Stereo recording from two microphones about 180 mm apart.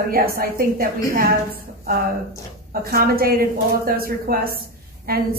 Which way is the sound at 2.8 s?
55° right (ahead or behind).